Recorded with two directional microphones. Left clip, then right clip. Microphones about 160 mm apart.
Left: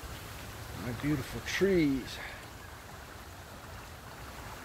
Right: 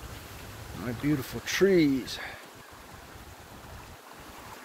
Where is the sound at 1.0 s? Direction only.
70° right (ahead or behind).